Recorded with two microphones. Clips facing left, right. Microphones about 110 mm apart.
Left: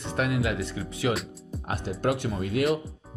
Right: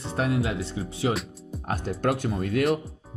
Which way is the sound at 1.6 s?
45° right (ahead or behind).